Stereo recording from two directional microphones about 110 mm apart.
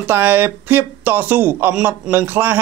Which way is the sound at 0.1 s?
20° right (ahead or behind).